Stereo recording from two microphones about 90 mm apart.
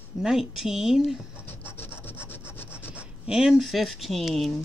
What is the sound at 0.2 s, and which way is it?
Speech, 5° right (ahead or behind).